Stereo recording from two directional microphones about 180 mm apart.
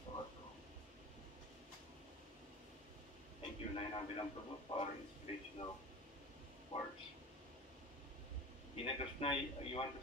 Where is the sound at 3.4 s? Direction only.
30° left (ahead or behind).